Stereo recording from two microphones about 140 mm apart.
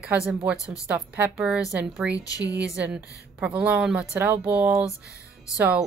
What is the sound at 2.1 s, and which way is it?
Speech, 25° left (ahead or behind).